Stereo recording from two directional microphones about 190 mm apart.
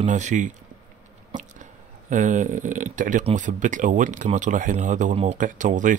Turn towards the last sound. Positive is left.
turn(degrees=-40)  # may be behind; listen again after turning